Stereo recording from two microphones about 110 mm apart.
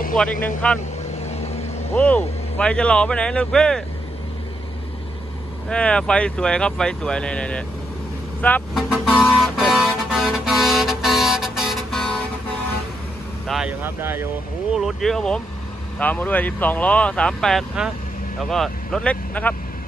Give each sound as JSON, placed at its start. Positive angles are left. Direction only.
{"t": 0.2, "sound": "speech", "side_deg": 15}
{"t": 1.2, "sound": "vehicle", "side_deg": 80}
{"t": 2.0, "sound": "speech", "side_deg": 15}
{"t": 5.7, "sound": "speech", "side_deg": 10}
{"t": 8.7, "sound": "speech", "side_deg": 0}
{"t": 9.7, "sound": "vehicle", "side_deg": -5}
{"t": 13.5, "sound": "speech", "side_deg": -5}
{"t": 13.8, "sound": "speech", "side_deg": -20}
{"t": 14.8, "sound": "speech", "side_deg": 0}